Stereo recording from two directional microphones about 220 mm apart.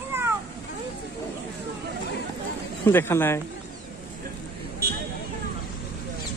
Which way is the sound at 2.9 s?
10° left (ahead or behind).